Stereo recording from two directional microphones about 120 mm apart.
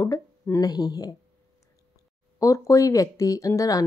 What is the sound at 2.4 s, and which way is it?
Speech, 25° left (ahead or behind).